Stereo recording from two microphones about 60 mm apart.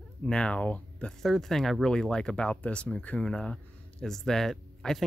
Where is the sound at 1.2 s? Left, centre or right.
Centre.